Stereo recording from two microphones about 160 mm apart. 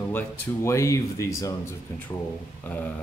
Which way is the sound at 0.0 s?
15° left (ahead or behind).